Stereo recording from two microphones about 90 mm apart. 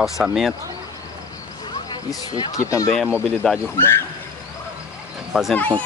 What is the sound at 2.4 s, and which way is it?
Speech, 40° left (ahead or behind).